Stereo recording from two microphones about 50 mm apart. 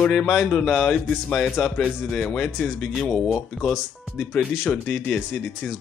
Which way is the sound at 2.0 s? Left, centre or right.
Left.